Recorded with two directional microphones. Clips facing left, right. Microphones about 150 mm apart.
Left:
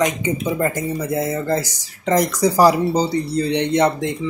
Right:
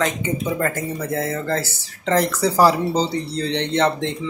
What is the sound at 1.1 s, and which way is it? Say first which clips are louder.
Speech: left 2 dB; 10° left (ahead or behind).